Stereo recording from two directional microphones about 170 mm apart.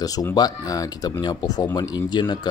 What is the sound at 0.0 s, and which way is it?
Speech, 20° left (ahead or behind).